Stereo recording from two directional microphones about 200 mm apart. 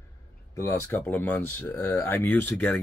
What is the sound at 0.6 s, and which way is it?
Speech, 10° left (ahead or behind).